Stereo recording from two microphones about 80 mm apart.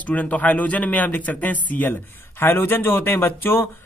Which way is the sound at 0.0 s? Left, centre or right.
Centre.